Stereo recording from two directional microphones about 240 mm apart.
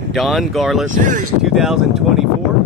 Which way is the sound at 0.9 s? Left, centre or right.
Right.